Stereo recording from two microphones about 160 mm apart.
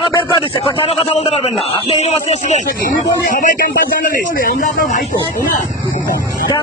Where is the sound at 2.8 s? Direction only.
55° left (ahead or behind).